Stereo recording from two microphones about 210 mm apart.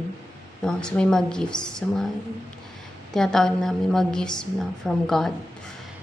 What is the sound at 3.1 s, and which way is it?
A woman's voice, centre (ahead or behind).